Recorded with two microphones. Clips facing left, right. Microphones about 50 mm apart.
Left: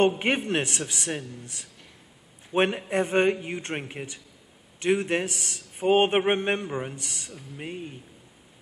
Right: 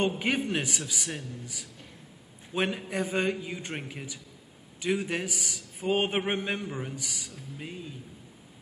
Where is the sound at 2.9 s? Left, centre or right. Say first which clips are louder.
Left 6 dB; left.